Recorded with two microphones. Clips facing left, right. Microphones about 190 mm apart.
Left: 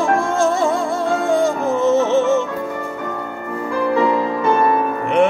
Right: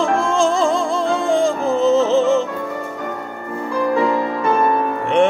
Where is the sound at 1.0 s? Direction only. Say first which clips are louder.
Left 1 dB; 90° right.